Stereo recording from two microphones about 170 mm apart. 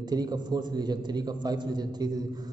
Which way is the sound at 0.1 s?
25° right (ahead or behind).